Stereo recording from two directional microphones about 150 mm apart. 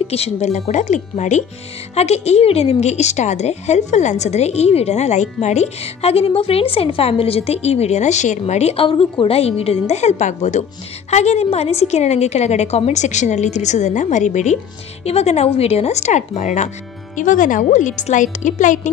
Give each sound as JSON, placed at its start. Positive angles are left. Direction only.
{"t": 0.1, "sound": "a woman's voice", "side_deg": 45}